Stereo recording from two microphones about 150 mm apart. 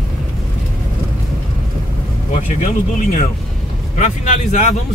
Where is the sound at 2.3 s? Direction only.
55° left (ahead or behind).